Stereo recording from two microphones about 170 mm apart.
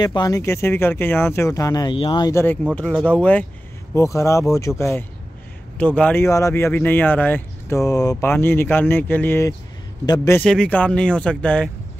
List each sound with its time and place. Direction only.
0.0 s speech: 25° left (ahead or behind)
2.3 s speech: 10° left (ahead or behind)
10.4 s speech: 5° left (ahead or behind)